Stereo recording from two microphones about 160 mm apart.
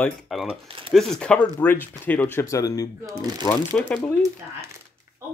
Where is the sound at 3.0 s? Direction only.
20° right (ahead or behind).